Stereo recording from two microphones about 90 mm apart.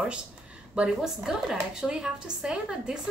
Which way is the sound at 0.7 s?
5° right (ahead or behind).